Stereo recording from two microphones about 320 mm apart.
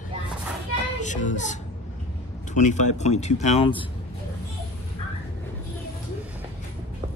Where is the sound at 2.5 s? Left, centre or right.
Left.